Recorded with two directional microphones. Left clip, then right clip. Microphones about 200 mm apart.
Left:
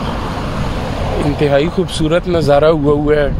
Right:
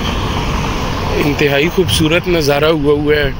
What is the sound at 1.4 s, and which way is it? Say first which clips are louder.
A man's voice: left 1 dB; 10° left (ahead or behind).